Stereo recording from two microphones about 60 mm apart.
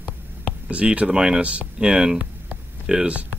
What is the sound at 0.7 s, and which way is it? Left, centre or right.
Speech, right.